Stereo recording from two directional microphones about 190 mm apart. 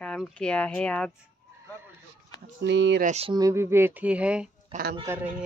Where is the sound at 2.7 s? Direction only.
70° right (ahead or behind).